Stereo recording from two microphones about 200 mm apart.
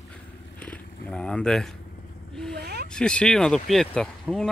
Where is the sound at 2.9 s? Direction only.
5° left (ahead or behind).